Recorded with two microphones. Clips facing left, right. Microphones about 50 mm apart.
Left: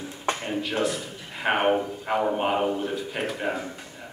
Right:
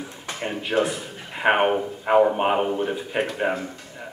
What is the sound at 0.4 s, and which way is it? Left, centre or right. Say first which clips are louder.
Speech: right 7 dB; right.